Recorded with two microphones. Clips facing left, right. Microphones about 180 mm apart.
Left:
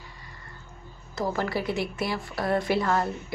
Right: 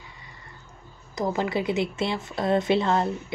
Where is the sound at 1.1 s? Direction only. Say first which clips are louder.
Right 2 dB; 20° right (ahead or behind).